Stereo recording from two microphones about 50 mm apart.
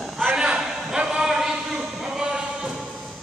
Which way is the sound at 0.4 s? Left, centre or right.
Centre.